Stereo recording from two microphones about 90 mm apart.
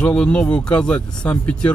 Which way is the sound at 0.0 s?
10° left (ahead or behind).